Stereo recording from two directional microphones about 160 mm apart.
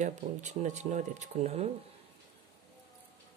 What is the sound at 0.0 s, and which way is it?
Speech, 50° right (ahead or behind).